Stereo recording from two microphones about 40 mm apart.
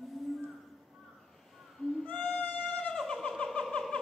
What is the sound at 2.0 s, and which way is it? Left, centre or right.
Music, left.